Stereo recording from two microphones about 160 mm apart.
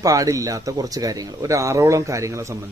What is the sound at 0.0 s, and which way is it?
Speech, 20° right (ahead or behind).